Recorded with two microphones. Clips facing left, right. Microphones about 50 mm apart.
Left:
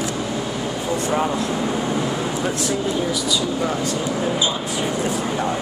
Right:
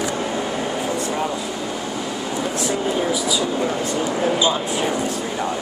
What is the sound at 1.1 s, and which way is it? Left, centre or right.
Speech, centre.